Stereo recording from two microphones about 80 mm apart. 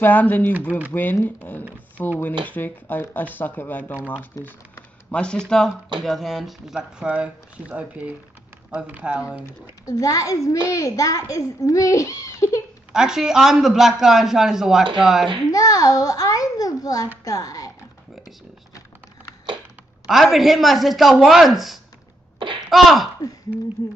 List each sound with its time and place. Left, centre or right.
0.0 s speech: left
4.4 s a child's voice: left
5.1 s speech: centre
9.8 s a child's voice: left
12.9 s a man's voice: centre
15.5 s a child's voice: left
20.1 s a man's voice: centre
23.8 s a child's voice: left